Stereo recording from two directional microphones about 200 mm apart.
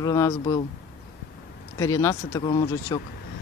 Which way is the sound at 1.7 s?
15° left (ahead or behind).